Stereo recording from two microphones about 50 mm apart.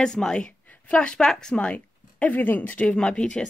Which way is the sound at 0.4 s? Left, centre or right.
Centre.